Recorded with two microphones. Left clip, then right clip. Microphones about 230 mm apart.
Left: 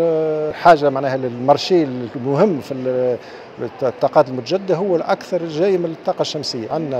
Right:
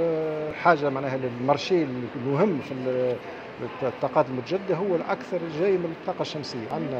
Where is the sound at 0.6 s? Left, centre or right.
Left.